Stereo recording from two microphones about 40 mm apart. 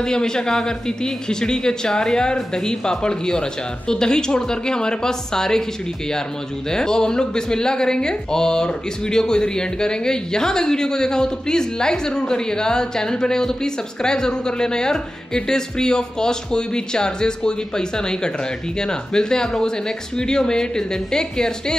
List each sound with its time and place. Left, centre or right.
0.0 s speech: centre
6.7 s speech: centre